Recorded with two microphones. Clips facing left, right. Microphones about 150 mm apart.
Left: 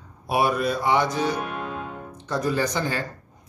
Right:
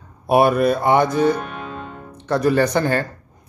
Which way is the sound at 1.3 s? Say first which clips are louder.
Right 1 dB; 5° left (ahead or behind).